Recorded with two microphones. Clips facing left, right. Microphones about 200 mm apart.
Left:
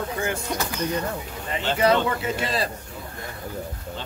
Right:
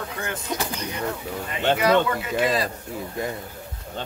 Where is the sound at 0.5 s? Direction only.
10° right (ahead or behind).